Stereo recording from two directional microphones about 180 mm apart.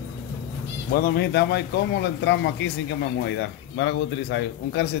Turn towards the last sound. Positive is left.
turn(degrees=85)